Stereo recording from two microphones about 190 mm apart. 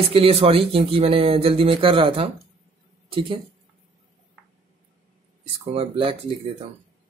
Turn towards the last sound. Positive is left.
turn(degrees=-30)  # may be behind; listen again after turning